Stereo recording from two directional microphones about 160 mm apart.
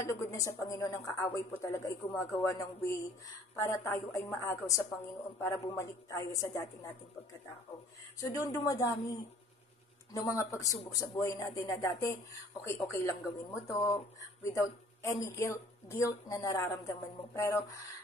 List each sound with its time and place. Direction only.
0.0 s a woman's voice: 20° left (ahead or behind)
8.2 s speech: 20° left (ahead or behind)
10.1 s speech: 20° left (ahead or behind)